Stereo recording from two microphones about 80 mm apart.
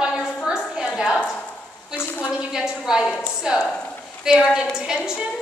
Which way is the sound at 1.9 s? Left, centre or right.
Left.